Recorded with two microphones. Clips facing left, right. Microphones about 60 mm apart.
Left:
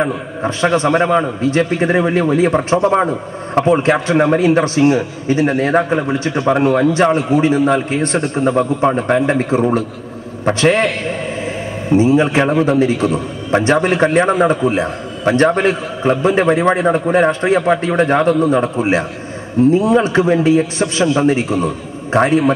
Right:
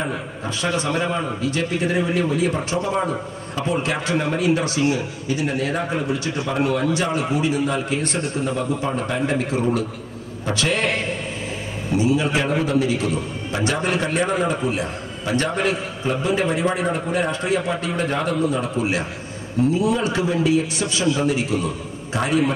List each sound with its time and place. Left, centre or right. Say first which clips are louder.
0.0 s a man's voice: left 8 dB; left
12.0 s a man's voice: left 7 dB; left